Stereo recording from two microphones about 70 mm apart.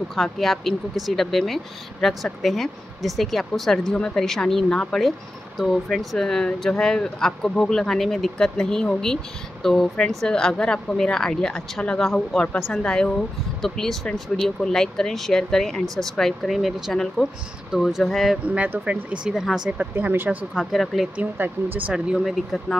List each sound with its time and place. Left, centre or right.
0.1 s speech: centre
12.0 s speech: centre
18.4 s speech: right
19.9 s speech: right
20.5 s speech: centre
21.2 s speech: right
21.9 s speech: centre